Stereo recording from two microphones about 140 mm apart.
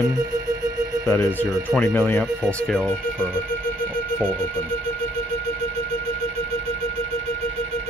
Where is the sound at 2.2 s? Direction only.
Centre (ahead or behind).